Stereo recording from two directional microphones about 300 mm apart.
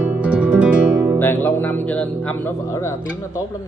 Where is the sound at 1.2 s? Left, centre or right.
Centre.